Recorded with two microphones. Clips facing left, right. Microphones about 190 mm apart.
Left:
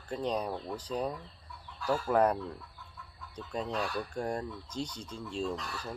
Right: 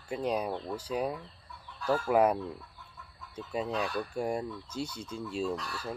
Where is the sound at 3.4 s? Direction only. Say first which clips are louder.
Right 2 dB; 5° right (ahead or behind).